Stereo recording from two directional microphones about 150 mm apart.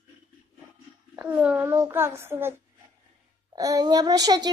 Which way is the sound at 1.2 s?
10° right (ahead or behind).